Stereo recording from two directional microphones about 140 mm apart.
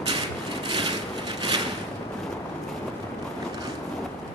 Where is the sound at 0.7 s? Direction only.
35° right (ahead or behind).